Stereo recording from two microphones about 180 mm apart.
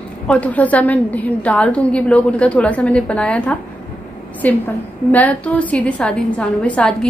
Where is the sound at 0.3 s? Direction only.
10° left (ahead or behind).